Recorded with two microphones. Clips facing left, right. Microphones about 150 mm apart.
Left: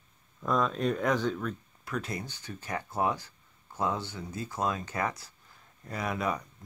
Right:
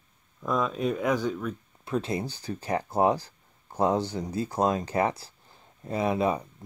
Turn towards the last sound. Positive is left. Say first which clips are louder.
# right 6 dB
turn(degrees=-25)  # may be behind; listen again after turning